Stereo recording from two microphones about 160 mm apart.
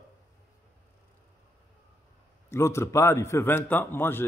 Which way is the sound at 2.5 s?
15° left (ahead or behind).